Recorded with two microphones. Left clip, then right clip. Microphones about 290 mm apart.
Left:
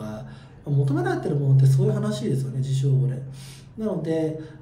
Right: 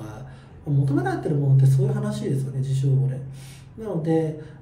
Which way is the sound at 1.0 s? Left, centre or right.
Centre.